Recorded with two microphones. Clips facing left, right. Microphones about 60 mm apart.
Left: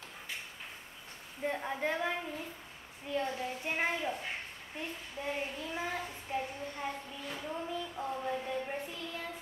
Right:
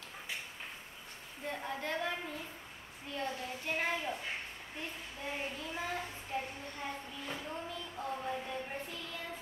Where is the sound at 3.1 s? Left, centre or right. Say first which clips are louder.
Left 4 dB; centre.